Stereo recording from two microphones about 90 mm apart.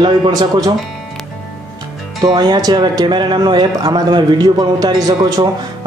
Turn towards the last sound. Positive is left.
turn(degrees=-55)  # may be behind; listen again after turning